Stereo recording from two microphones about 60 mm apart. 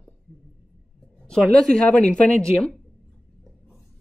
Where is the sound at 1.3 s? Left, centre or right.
Centre.